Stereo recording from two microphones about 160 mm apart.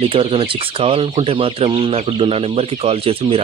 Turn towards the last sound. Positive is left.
turn(degrees=-35)  # may be behind; listen again after turning